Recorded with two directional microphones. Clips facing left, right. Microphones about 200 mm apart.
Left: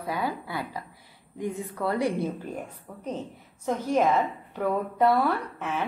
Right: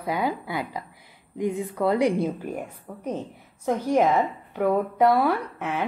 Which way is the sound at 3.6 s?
15° right (ahead or behind).